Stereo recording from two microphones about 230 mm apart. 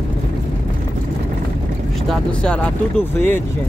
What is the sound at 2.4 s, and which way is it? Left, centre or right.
Speech, centre.